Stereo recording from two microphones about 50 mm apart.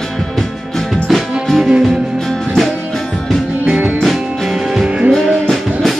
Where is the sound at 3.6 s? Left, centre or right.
Right.